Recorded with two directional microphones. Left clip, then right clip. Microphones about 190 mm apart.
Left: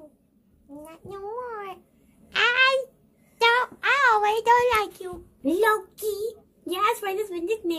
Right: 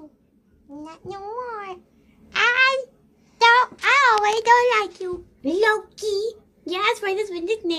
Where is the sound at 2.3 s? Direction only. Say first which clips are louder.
Right 2 dB; centre (ahead or behind).